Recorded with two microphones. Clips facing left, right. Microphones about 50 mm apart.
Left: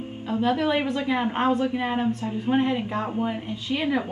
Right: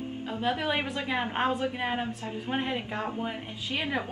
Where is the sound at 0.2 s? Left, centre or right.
Centre.